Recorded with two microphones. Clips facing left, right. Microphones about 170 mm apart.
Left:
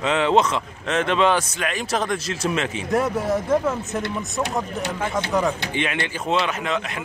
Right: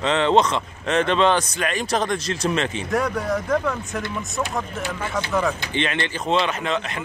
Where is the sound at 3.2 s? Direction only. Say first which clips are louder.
Left 2 dB; 25° left (ahead or behind).